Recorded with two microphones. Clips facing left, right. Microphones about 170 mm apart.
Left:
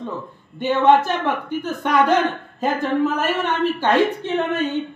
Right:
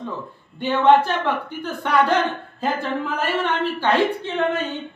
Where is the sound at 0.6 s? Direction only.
15° left (ahead or behind).